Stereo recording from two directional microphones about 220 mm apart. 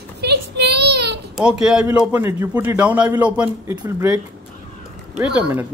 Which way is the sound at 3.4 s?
20° right (ahead or behind).